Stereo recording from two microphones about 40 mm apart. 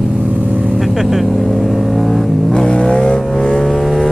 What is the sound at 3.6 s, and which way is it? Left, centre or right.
Vehicle, centre.